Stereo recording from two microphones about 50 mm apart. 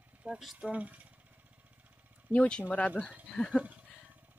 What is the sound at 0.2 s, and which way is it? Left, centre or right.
Speech, right.